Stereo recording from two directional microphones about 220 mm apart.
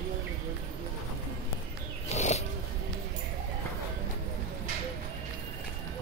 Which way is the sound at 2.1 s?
30° left (ahead or behind).